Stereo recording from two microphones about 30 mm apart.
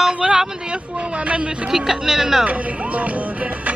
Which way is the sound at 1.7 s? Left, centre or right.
Centre.